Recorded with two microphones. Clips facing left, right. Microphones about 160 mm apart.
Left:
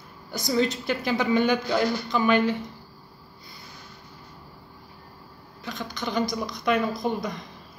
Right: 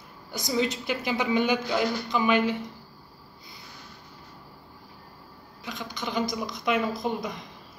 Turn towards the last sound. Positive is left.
turn(degrees=-20)  # may be behind; listen again after turning